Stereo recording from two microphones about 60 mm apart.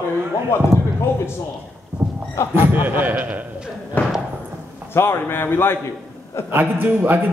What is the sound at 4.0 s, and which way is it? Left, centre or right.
Speech, left.